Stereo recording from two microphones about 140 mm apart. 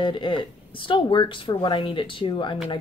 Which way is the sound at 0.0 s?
35° left (ahead or behind).